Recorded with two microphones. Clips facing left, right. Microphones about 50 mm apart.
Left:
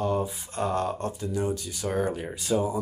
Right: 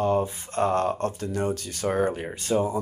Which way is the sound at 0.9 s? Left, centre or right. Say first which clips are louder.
Right 2 dB; right.